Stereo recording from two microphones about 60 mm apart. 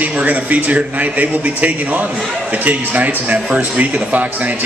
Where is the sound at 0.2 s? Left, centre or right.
Right.